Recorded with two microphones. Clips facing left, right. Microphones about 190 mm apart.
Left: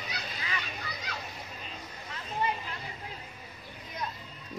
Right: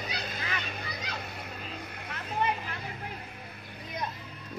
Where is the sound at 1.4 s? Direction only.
60° right (ahead or behind).